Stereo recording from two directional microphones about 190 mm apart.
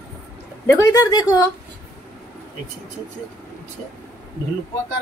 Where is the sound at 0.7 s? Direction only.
15° left (ahead or behind).